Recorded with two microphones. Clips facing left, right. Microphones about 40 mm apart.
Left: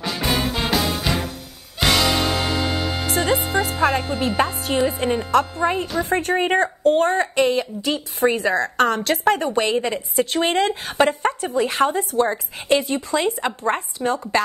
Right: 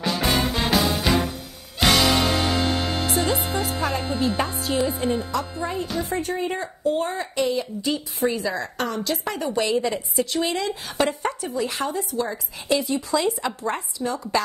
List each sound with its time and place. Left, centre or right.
0.0 s music: centre
3.1 s music: left
4.4 s a woman's voice: left